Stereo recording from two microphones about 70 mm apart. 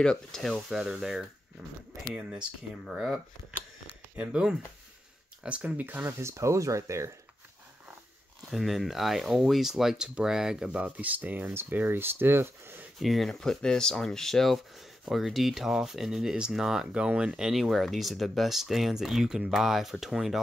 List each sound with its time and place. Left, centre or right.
0.0 s speech: centre
2.8 s speech: centre
4.2 s speech: centre
6.2 s speech: right
8.5 s speech: centre; by 12.8 s right
13.0 s speech: centre
17.5 s speech: centre